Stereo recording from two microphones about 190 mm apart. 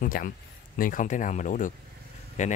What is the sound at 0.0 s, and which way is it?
Speech, 50° left (ahead or behind).